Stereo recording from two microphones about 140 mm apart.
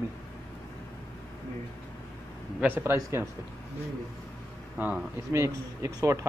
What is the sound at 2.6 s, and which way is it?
Speech, 15° right (ahead or behind).